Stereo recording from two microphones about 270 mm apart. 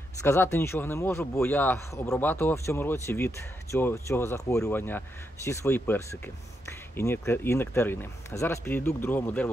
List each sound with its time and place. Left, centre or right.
0.2 s speech: centre